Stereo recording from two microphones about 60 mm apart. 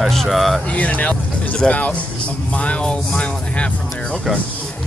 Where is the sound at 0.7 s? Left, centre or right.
Left.